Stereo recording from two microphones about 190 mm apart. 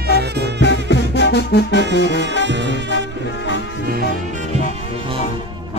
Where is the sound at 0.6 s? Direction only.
65° left (ahead or behind).